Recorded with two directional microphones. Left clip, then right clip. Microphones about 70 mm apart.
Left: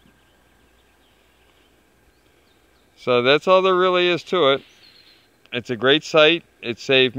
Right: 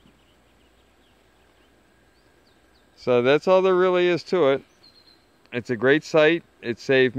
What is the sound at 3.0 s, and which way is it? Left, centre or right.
Speech, centre.